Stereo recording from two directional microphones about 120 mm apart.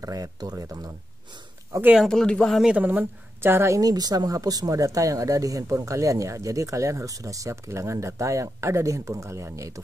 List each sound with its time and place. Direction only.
0.0 s speech: 30° right (ahead or behind)
2.0 s speech: 5° left (ahead or behind)
2.6 s a woman's voice: 10° right (ahead or behind)